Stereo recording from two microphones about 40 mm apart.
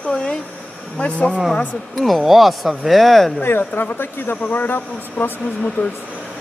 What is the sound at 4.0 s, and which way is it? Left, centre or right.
Speech, left.